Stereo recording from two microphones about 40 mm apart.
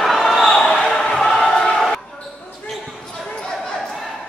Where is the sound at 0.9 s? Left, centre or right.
Centre.